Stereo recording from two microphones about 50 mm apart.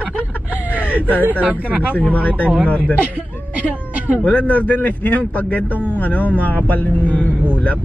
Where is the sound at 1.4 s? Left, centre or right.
Right.